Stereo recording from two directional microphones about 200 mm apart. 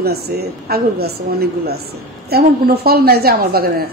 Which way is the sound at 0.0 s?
50° right (ahead or behind).